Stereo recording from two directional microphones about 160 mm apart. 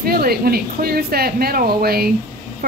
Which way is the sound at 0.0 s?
70° right (ahead or behind).